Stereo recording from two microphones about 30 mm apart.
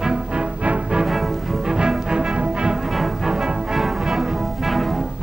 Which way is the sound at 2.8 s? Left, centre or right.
Centre.